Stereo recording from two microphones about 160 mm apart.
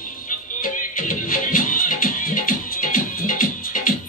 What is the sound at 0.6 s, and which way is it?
Music, 60° left (ahead or behind).